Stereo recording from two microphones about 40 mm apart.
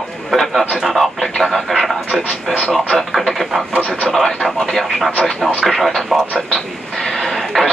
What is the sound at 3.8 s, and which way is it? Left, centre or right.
Radio, centre.